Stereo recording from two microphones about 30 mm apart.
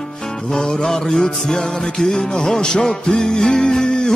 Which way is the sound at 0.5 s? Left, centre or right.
Left.